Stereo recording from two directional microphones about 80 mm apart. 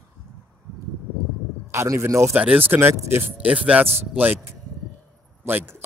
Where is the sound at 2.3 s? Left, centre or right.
Centre.